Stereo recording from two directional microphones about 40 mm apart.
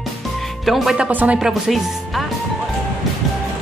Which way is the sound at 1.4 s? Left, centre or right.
Centre.